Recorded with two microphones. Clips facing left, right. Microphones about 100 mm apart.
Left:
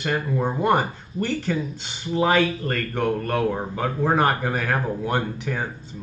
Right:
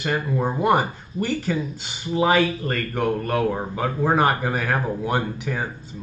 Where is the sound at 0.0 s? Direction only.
5° right (ahead or behind).